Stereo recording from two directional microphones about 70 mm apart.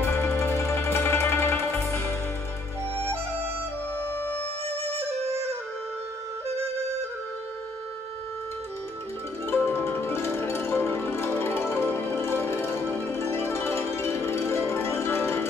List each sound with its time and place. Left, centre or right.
0.0 s music: left
9.5 s music: left